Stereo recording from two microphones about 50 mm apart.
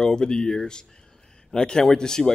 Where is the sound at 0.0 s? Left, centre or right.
Centre.